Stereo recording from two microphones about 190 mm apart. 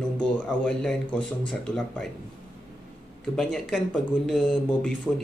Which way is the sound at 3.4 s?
Centre (ahead or behind).